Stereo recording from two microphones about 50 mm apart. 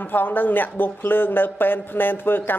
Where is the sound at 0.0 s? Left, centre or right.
Left.